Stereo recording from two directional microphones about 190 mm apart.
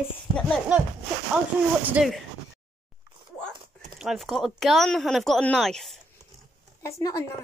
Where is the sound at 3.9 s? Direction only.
Centre (ahead or behind).